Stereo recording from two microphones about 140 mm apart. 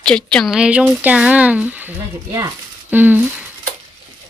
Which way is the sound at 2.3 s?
25° right (ahead or behind).